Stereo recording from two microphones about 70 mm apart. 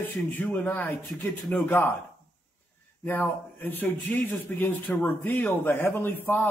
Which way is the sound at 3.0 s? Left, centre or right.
Left.